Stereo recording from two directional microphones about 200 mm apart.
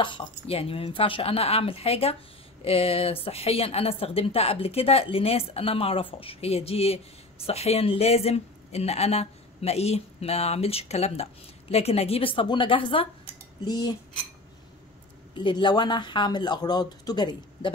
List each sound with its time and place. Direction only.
0.0 s a woman's voice: 25° left (ahead or behind)
15.3 s a woman's voice: 20° left (ahead or behind)